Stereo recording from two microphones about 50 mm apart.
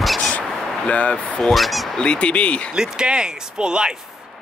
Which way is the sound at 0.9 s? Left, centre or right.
Left.